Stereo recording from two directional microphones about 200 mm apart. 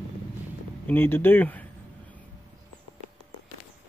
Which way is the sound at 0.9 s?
10° left (ahead or behind).